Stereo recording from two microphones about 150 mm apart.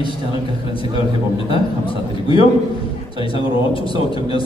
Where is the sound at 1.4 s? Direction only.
35° left (ahead or behind).